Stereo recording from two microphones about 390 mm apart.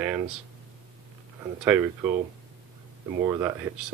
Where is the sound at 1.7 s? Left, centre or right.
Centre.